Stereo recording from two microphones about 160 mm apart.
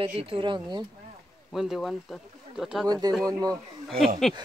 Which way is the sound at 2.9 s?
25° right (ahead or behind).